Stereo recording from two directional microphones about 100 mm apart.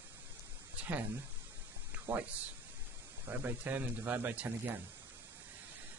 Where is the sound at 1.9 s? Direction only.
20° right (ahead or behind).